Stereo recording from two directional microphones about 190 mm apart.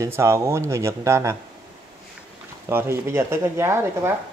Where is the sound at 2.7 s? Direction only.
10° right (ahead or behind).